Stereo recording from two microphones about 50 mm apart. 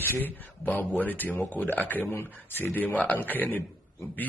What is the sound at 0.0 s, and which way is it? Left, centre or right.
A man's voice, left.